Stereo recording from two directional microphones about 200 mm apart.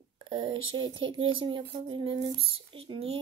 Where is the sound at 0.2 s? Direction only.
25° right (ahead or behind).